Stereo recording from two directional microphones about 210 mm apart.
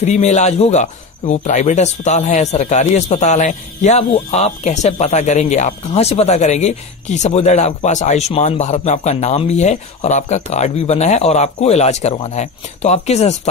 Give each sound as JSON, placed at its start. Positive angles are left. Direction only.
{"t": 0.0, "sound": "speech", "side_deg": 35}